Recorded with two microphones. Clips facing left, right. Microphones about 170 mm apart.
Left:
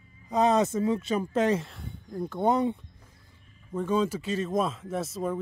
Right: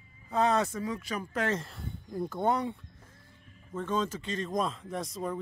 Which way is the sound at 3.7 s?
10° left (ahead or behind).